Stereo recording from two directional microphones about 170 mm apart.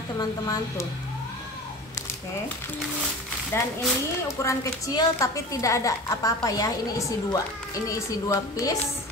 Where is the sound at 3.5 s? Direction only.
15° left (ahead or behind).